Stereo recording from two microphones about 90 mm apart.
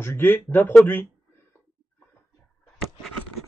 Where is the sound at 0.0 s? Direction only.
25° left (ahead or behind).